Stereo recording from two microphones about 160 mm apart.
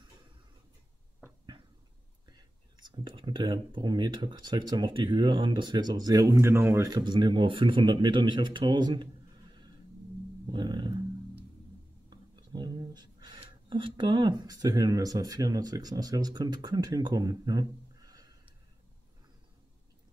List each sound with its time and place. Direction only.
2.2 s speech: 25° right (ahead or behind)
10.4 s roar: 30° right (ahead or behind)
12.1 s speech: 25° right (ahead or behind)